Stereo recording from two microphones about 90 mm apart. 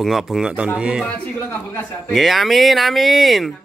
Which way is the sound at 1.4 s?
25° left (ahead or behind).